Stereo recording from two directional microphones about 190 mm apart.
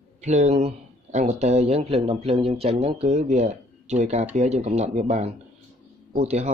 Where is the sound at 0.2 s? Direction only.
35° right (ahead or behind).